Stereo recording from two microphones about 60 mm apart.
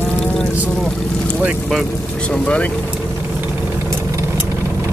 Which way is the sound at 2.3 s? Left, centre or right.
Centre.